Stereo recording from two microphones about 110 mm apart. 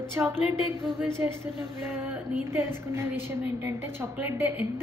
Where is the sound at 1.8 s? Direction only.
20° right (ahead or behind).